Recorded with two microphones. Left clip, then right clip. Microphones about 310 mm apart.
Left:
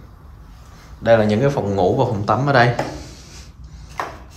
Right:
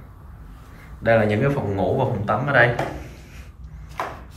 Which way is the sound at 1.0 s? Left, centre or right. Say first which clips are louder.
Left 4 dB; centre.